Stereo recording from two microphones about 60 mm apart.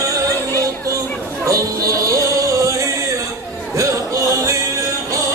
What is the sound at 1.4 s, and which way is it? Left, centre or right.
Music, right.